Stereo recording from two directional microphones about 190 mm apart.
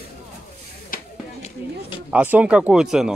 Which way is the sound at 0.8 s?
45° left (ahead or behind).